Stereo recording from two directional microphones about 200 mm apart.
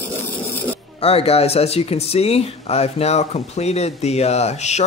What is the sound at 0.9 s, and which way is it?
Speech, 30° left (ahead or behind).